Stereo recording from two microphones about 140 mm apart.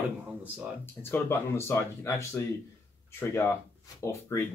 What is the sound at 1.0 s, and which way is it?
Speech, 15° left (ahead or behind).